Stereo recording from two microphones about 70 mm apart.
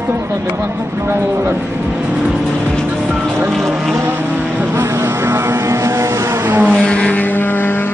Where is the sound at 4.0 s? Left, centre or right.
Right.